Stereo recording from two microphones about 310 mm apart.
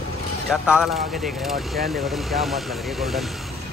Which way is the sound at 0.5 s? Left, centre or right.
Centre.